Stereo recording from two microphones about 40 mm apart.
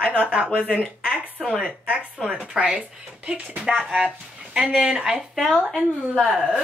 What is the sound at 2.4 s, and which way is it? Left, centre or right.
Speech, centre.